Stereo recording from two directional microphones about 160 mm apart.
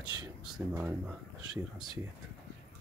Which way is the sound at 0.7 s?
10° right (ahead or behind).